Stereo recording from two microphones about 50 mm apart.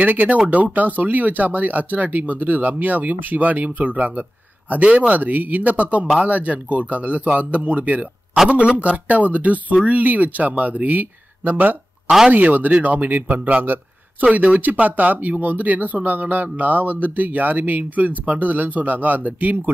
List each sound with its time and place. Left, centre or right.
0.0 s speech: right